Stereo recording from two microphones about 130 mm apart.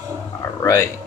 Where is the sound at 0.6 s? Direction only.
25° left (ahead or behind).